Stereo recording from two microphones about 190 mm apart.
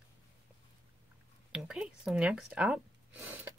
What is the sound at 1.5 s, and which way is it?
Speech, 5° right (ahead or behind).